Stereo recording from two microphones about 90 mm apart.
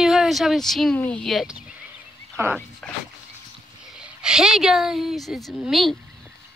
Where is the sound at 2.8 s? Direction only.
10° left (ahead or behind).